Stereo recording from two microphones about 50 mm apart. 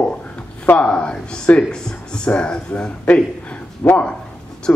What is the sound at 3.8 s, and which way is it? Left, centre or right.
Speech, left.